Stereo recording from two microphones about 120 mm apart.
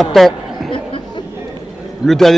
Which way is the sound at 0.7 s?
45° left (ahead or behind).